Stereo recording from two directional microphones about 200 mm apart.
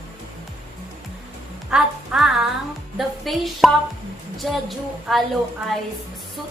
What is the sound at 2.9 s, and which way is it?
A woman's voice, centre (ahead or behind).